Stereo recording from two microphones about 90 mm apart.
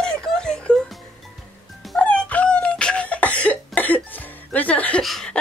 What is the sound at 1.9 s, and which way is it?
Music, 15° left (ahead or behind).